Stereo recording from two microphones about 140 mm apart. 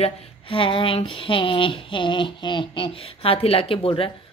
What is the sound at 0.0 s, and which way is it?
Music, 40° left (ahead or behind).